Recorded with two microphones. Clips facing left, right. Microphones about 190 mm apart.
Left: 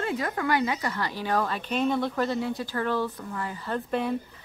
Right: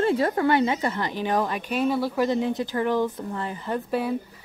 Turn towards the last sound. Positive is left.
turn(degrees=-5)  # may be behind; listen again after turning